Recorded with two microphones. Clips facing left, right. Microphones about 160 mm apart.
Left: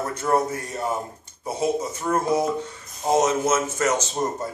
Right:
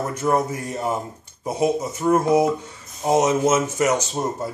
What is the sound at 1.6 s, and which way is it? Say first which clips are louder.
Speech: right 3 dB; 15° right (ahead or behind).